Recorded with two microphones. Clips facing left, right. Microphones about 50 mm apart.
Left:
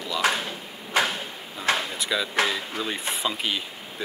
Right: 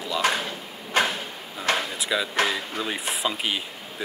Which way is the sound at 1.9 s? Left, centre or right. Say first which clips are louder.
Even; centre.